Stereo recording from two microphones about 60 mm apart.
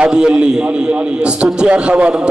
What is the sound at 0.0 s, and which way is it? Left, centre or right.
A man's voice, centre.